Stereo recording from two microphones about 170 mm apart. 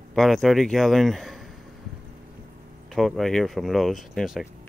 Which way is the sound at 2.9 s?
Centre (ahead or behind).